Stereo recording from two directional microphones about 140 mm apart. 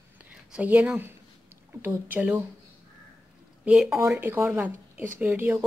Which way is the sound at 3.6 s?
5° right (ahead or behind).